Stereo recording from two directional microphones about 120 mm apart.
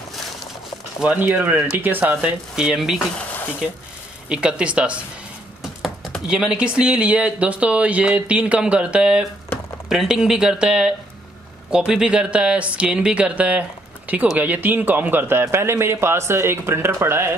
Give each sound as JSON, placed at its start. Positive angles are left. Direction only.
{"t": 1.0, "sound": "speech", "side_deg": -15}
{"t": 4.3, "sound": "speech", "side_deg": -10}